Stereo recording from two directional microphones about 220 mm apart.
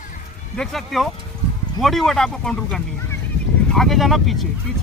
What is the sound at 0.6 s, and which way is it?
Speech, centre (ahead or behind).